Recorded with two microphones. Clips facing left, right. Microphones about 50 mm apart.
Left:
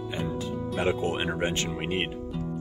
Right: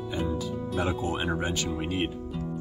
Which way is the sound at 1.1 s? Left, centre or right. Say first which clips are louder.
Even; left.